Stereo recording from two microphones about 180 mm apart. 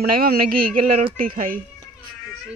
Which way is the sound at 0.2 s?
55° right (ahead or behind).